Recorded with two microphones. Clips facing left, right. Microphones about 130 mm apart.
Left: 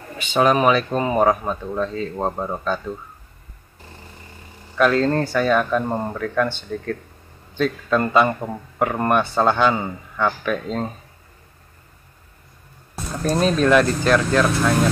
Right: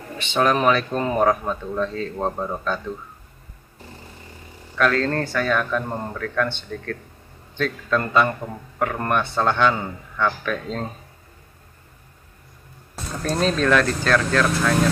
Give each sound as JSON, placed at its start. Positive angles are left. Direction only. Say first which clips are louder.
{"t": 0.2, "sound": "speech", "louder": "left 3 dB", "side_deg": 5}
{"t": 4.7, "sound": "speech", "louder": "left 3 dB", "side_deg": 15}
{"t": 13.2, "sound": "speech", "louder": "left 3 dB", "side_deg": 10}